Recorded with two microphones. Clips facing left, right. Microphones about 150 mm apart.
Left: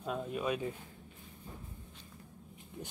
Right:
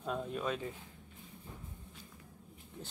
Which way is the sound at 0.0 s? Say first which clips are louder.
Left 1 dB; 5° left (ahead or behind).